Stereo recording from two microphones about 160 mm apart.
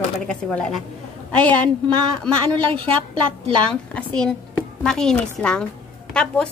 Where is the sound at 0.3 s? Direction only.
5° left (ahead or behind).